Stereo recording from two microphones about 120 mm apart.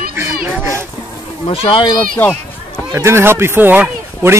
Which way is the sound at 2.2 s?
15° left (ahead or behind).